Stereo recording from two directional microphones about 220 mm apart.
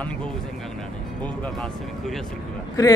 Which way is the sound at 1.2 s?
5° left (ahead or behind).